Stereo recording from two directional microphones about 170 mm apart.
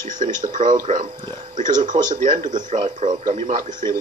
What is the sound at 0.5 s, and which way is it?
A man's voice, 50° right (ahead or behind).